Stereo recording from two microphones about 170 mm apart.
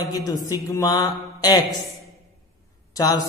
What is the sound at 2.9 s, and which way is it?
Speech, 20° left (ahead or behind).